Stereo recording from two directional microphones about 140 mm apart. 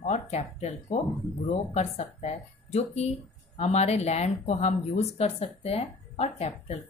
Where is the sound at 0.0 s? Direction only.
50° left (ahead or behind).